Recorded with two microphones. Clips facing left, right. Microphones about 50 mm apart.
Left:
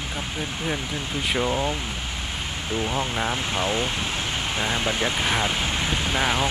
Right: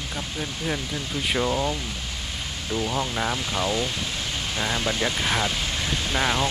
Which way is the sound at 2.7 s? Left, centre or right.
Centre.